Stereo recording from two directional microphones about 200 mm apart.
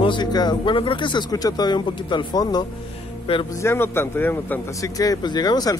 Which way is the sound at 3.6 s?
10° left (ahead or behind).